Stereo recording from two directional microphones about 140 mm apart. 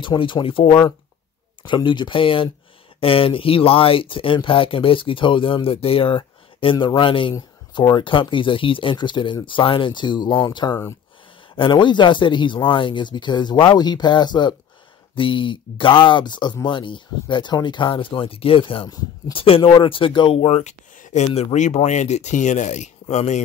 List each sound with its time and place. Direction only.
0.0 s speech: 35° left (ahead or behind)
7.3 s speech: 25° left (ahead or behind); by 21.3 s 60° left (ahead or behind)
21.3 s speech: 45° left (ahead or behind)
21.5 s speech: 55° left (ahead or behind)